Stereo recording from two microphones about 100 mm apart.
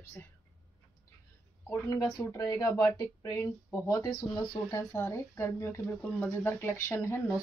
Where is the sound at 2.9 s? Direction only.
30° left (ahead or behind).